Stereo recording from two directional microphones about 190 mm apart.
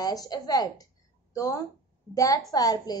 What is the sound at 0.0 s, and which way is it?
A woman's voice, 20° left (ahead or behind).